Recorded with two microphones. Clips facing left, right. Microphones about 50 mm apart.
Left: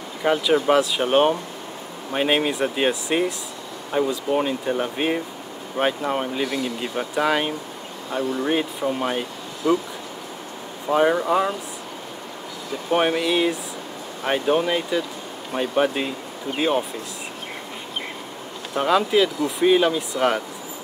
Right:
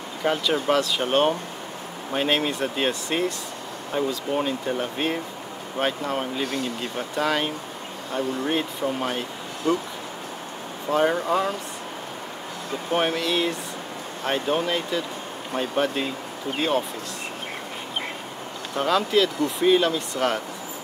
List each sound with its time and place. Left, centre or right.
0.2 s speech: centre
6.4 s speech: left
6.8 s speech: centre
10.9 s speech: centre
12.9 s speech: centre
18.8 s speech: centre